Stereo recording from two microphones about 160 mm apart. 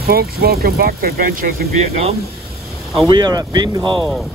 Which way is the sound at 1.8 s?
40° right (ahead or behind).